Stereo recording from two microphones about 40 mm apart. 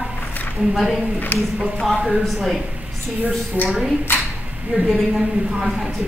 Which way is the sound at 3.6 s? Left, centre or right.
Left.